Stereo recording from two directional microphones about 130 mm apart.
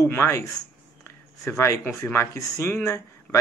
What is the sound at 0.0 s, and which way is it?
Speech, 20° left (ahead or behind).